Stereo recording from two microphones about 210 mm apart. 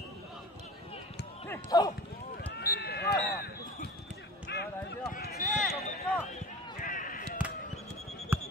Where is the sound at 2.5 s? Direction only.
50° left (ahead or behind).